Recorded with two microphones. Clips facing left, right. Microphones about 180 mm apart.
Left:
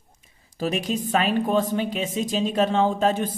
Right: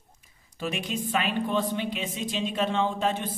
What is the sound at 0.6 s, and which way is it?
A woman's voice, 40° left (ahead or behind).